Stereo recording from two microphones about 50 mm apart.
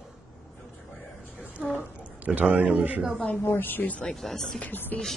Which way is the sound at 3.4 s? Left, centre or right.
Left.